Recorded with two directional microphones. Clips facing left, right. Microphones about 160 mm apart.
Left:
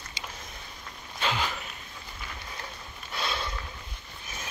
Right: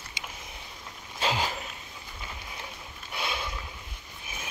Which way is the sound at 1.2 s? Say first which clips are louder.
Right 1 dB; 35° right (ahead or behind).